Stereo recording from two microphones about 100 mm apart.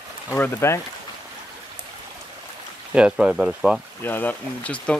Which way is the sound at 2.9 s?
10° right (ahead or behind).